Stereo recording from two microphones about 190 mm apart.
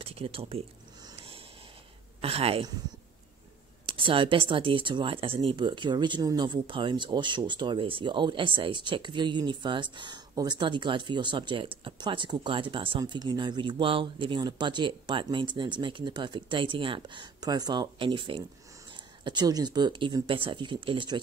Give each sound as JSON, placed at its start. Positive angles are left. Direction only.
{"t": 0.0, "sound": "speech", "side_deg": -30}
{"t": 1.0, "sound": "a sound", "side_deg": -30}
{"t": 2.2, "sound": "speech", "side_deg": -30}
{"t": 3.8, "sound": "speech", "side_deg": -25}